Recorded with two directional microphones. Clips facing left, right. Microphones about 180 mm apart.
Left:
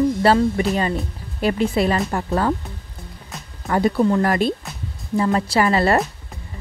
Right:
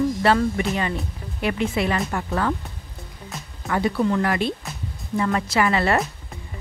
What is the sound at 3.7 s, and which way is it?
A woman's voice, 35° left (ahead or behind).